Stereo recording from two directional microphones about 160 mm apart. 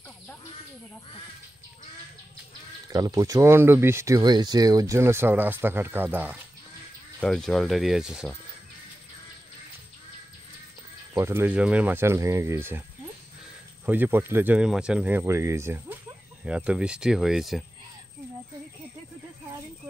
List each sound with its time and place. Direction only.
2.9 s speech: 20° right (ahead or behind)
7.2 s speech: 5° left (ahead or behind)
11.1 s speech: 15° right (ahead or behind)
13.8 s speech: 10° right (ahead or behind)